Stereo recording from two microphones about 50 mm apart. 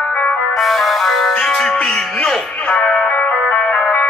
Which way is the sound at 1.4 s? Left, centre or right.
Centre.